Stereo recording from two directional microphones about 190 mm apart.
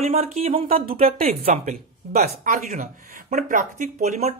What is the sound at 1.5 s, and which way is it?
Speech, 40° right (ahead or behind).